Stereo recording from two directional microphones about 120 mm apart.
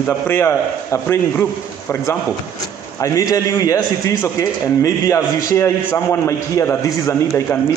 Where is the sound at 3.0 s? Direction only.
30° left (ahead or behind).